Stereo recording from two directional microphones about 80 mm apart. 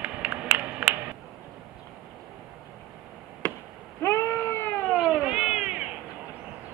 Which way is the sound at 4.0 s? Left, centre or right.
Left.